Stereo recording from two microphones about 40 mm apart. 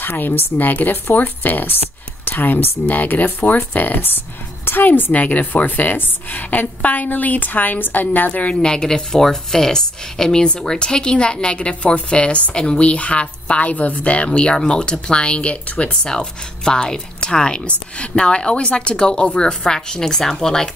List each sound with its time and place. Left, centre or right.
0.0 s a woman's voice: left
8.5 s speech: centre